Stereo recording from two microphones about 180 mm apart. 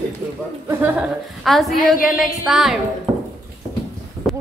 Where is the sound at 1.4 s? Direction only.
Centre (ahead or behind).